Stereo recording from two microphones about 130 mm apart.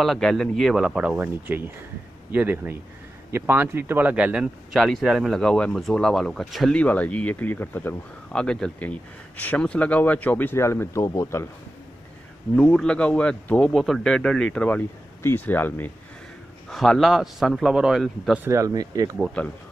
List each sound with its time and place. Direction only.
0.0 s a man's voice: centre (ahead or behind); by 11.4 s 20° left (ahead or behind)
12.5 s speech: 10° left (ahead or behind)
16.6 s a man's voice: centre (ahead or behind)
18.4 s speech: 25° right (ahead or behind)
19.4 s speech: 10° left (ahead or behind)